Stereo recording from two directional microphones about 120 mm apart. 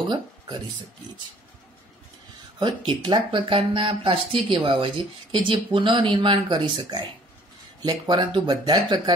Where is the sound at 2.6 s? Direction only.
45° right (ahead or behind).